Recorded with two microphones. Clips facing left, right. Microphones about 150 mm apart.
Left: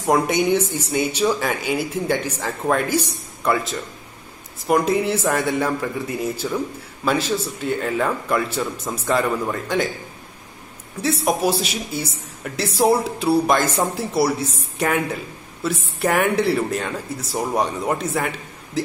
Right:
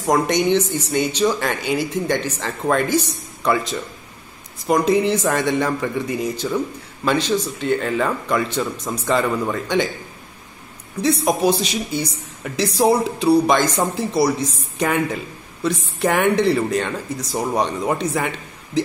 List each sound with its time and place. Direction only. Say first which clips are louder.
0.0 s speech: right 1 dB; 5° left (ahead or behind)
3.5 s speech: right 1 dB; centre (ahead or behind)
11.0 s speech: right 2 dB; 5° left (ahead or behind)